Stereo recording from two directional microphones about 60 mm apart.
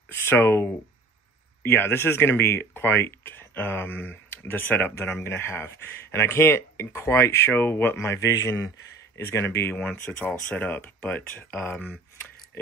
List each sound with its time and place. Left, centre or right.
0.1 s speech: left
4.9 s speech: left
8.0 s speech: left
10.2 s speech: left